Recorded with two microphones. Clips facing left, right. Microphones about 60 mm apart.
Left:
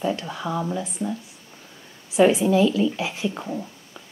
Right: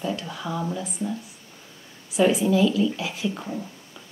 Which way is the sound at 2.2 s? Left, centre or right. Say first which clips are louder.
Left 2 dB; left.